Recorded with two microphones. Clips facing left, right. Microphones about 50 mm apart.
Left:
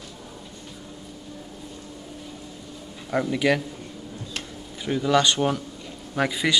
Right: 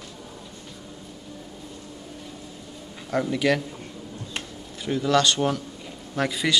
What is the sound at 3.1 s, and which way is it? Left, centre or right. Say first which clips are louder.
Speech: left 1 dB; centre.